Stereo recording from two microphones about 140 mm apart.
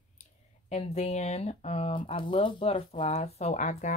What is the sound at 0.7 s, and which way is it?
Speech, 50° left (ahead or behind).